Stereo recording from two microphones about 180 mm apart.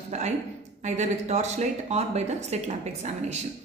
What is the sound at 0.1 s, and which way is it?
A woman's voice, 40° right (ahead or behind).